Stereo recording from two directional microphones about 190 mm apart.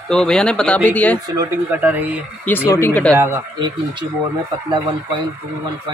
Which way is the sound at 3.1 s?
15° right (ahead or behind).